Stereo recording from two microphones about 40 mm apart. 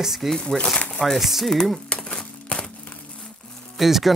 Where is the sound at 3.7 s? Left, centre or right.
Centre.